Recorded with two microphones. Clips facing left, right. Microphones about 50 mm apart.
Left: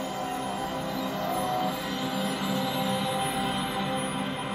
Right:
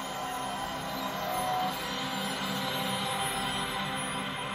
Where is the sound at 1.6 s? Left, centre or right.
Centre.